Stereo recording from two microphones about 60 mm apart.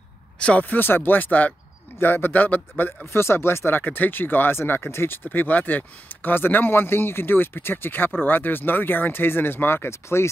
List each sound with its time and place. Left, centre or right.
0.4 s speech: left
3.1 s speech: left